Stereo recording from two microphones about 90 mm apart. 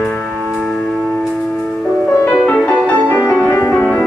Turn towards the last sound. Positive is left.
turn(degrees=20)  # may be behind; listen again after turning